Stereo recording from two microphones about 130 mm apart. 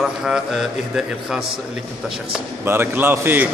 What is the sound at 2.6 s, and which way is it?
Speech, 15° right (ahead or behind).